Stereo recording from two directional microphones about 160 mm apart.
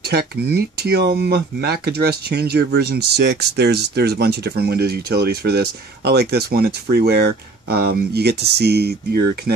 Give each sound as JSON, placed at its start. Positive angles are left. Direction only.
{"t": 0.1, "sound": "speech", "side_deg": -90}